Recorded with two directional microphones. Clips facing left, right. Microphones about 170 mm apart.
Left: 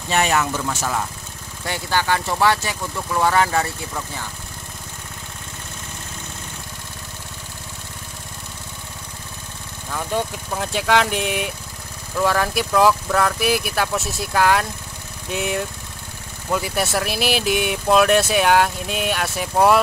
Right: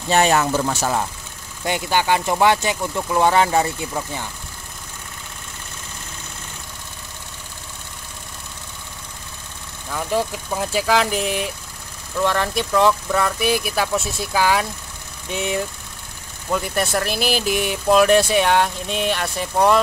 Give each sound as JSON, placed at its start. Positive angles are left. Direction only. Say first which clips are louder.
{"t": 0.1, "sound": "speech", "louder": "right 3 dB", "side_deg": -35}
{"t": 1.6, "sound": "speech", "louder": "right 3 dB", "side_deg": -20}
{"t": 9.8, "sound": "speech", "louder": "right 2 dB", "side_deg": 0}